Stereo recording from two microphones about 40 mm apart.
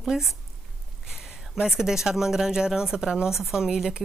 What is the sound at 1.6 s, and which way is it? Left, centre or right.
Speech, centre.